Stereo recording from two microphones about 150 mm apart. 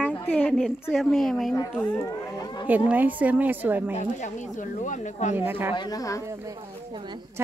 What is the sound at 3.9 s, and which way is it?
Speech, 55° left (ahead or behind).